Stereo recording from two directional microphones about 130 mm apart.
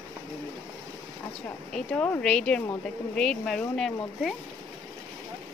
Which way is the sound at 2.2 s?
5° left (ahead or behind).